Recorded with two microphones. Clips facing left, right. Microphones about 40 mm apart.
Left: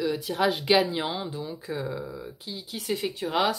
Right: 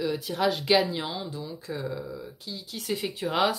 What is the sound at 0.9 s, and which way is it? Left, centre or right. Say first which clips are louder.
Speech: left 3 dB; left.